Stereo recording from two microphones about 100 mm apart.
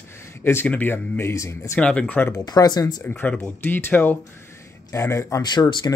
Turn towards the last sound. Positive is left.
turn(degrees=45)  # may be behind; listen again after turning